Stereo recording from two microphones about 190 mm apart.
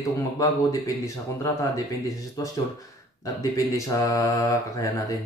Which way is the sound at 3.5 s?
15° left (ahead or behind).